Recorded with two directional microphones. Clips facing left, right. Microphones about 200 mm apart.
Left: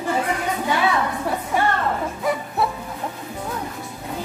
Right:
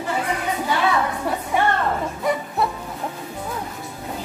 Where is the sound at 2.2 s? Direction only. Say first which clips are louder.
Even; centre (ahead or behind).